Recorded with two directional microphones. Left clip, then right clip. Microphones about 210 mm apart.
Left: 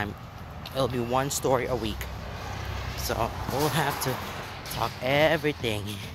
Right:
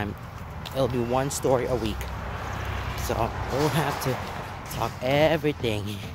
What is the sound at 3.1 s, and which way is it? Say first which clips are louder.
Speech: right 1 dB; 5° right (ahead or behind).